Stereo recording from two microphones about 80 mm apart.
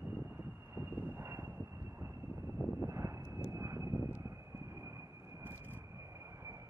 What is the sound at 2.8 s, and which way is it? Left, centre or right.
Vehicle, right.